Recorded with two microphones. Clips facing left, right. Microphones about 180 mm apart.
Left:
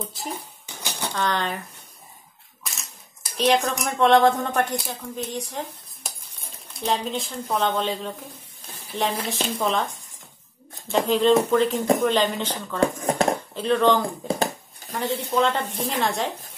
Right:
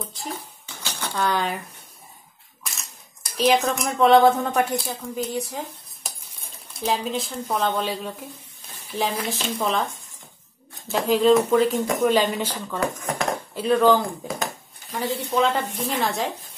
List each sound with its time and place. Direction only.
0.3 s dishes: 15° left (ahead or behind)
1.1 s speech: 10° right (ahead or behind)
2.6 s camera: centre (ahead or behind)
4.6 s speech: 5° right (ahead or behind)
10.9 s speech: 5° right (ahead or behind)
12.8 s speech: 30° left (ahead or behind)
13.6 s speech: 5° right (ahead or behind)
15.0 s speech: centre (ahead or behind)